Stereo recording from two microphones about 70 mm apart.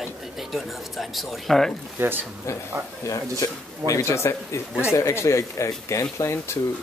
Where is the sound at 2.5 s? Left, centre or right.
Left.